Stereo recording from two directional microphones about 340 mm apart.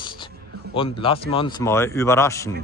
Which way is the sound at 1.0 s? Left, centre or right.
Centre.